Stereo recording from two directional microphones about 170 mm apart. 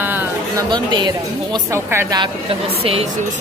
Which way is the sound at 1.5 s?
15° right (ahead or behind).